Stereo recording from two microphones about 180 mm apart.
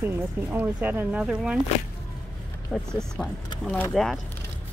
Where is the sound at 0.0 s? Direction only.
10° right (ahead or behind).